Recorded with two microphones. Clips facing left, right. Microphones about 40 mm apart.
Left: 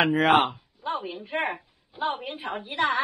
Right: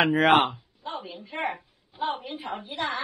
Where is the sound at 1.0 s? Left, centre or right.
Left.